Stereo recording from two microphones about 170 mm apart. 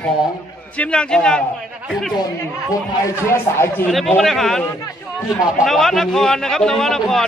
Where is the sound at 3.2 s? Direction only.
15° left (ahead or behind).